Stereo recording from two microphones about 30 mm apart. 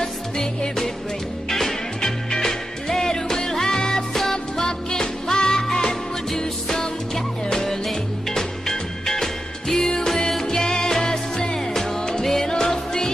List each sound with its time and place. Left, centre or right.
2.0 s music: left
9.8 s music: left